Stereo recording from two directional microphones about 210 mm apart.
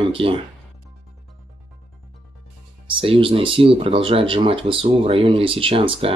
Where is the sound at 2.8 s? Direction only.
25° right (ahead or behind).